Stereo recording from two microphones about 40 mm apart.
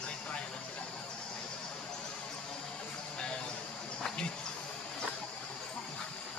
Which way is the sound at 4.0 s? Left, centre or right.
Left.